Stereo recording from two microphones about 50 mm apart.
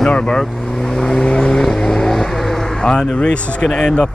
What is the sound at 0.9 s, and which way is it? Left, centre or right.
Vehicle, centre.